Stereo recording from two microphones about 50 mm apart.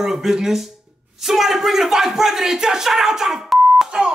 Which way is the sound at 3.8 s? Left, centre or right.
Centre.